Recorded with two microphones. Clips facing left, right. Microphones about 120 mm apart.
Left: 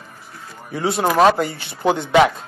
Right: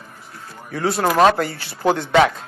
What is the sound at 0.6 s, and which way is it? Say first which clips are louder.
Speech: even; 5° left (ahead or behind).